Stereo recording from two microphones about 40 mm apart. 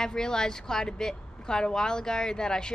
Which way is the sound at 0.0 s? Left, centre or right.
Centre.